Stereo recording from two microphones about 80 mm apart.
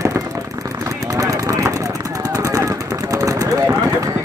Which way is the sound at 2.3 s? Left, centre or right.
Right.